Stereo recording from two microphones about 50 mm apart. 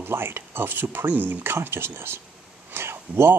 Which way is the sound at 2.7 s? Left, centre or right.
Right.